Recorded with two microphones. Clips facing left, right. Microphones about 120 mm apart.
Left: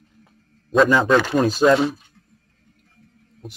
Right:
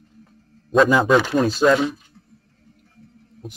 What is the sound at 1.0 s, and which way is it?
Speech, 5° right (ahead or behind).